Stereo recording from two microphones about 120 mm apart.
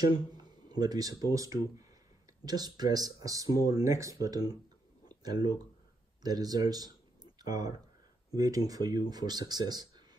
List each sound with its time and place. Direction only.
0.4 s speech: 35° right (ahead or behind)
5.0 s a sound: 35° right (ahead or behind)
6.2 s speech: 35° right (ahead or behind)